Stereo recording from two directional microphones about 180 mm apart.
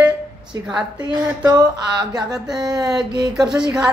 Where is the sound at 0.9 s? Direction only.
20° right (ahead or behind).